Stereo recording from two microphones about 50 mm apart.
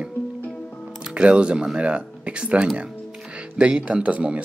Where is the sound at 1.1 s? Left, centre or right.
Right.